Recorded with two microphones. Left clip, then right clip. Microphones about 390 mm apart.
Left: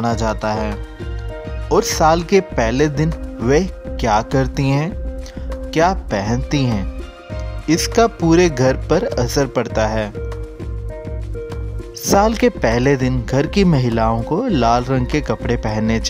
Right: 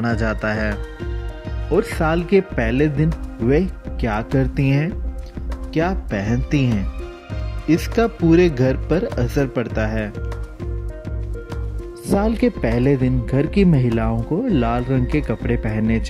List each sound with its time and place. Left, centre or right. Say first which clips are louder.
0.0 s speech: left 3 dB; centre
1.8 s speech: left 6 dB; centre
12.2 s speech: left 6 dB; centre